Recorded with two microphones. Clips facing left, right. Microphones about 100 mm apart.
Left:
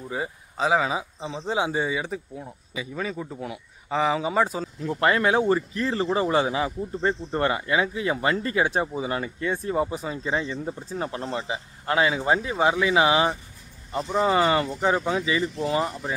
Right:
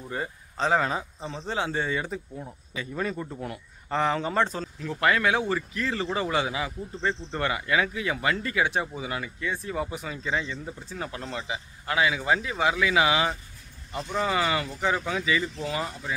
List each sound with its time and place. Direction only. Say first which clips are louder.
0.1 s speech: left 2 dB; 10° left (ahead or behind)
4.7 s speech: left 2 dB; 30° left (ahead or behind)
9.8 s speech: left 5 dB; 30° left (ahead or behind)